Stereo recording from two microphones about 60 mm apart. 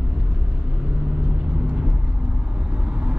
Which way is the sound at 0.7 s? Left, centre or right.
Centre.